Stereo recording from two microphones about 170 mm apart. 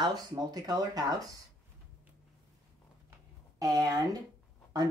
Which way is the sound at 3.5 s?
20° right (ahead or behind).